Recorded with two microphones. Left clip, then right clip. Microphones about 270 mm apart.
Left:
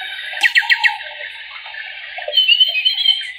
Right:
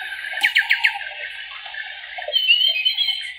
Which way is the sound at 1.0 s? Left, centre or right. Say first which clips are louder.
Left 1 dB; left.